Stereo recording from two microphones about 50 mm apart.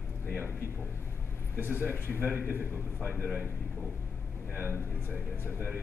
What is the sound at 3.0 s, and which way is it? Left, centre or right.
Speech, right.